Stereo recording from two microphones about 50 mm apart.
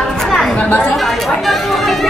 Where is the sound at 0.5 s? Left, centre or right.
Left.